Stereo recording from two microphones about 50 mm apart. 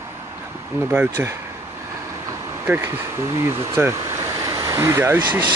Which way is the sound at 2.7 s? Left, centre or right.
Right.